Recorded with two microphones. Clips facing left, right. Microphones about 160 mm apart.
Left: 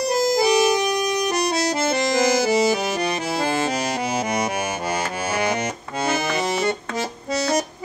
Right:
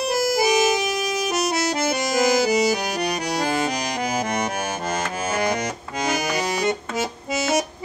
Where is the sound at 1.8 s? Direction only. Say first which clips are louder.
Left 2 dB; centre (ahead or behind).